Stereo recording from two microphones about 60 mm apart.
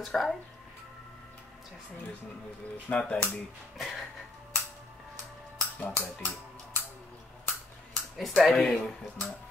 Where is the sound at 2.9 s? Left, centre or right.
Left.